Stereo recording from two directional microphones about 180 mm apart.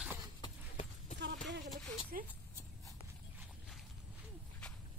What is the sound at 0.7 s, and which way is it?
Clip-clop, 40° left (ahead or behind).